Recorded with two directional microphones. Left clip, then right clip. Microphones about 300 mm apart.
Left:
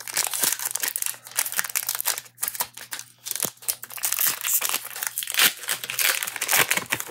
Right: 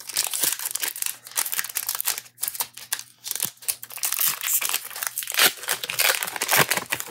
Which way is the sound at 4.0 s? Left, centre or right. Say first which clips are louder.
Even; centre.